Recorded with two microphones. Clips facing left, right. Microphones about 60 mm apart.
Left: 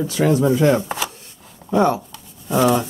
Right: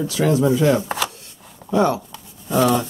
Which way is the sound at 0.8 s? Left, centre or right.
Centre.